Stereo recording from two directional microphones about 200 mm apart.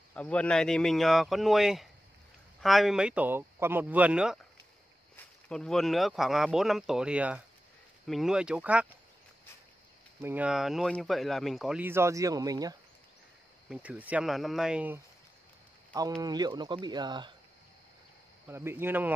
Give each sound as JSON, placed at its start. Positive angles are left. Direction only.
{"t": 0.1, "sound": "speech", "side_deg": 5}
{"t": 10.2, "sound": "speech", "side_deg": -5}
{"t": 13.7, "sound": "speech", "side_deg": -5}
{"t": 16.2, "sound": "speech", "side_deg": -20}
{"t": 18.5, "sound": "speech", "side_deg": -10}